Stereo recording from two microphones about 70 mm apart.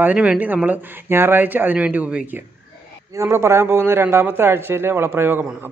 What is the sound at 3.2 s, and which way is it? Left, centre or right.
A man's voice, right.